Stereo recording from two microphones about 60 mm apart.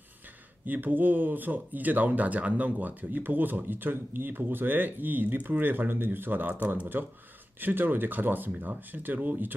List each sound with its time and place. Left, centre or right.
0.7 s speech: right